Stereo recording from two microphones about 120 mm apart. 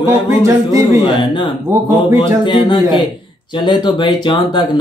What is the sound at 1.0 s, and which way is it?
Speech, 45° left (ahead or behind).